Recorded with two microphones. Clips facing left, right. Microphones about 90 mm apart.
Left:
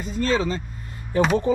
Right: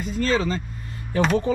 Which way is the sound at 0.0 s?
35° left (ahead or behind).